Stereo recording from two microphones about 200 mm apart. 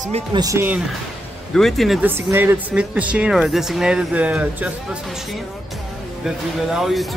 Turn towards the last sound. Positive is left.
turn(degrees=0)  # may be behind; listen again after turning